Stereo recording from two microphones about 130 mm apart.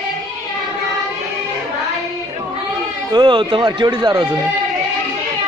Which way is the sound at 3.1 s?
40° right (ahead or behind).